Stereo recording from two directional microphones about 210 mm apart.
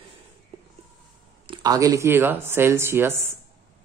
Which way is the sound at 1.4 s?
20° right (ahead or behind).